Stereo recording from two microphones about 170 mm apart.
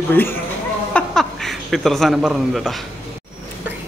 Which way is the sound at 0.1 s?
10° left (ahead or behind).